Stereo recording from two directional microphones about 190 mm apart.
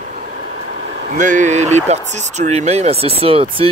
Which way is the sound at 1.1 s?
40° right (ahead or behind).